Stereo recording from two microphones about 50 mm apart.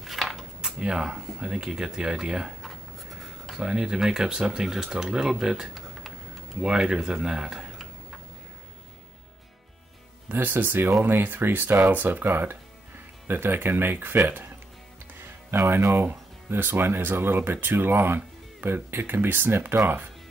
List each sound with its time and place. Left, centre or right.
0.0 s a sound: centre
0.6 s speech: centre
10.2 s speech: right
15.2 s music: right
16.0 s speech: right